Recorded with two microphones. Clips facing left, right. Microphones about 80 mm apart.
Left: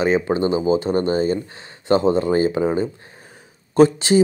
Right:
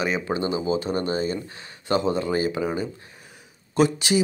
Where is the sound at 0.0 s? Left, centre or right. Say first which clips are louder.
Left 7 dB; left.